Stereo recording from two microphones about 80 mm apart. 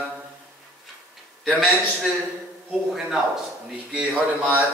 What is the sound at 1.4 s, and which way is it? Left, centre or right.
Speech, centre.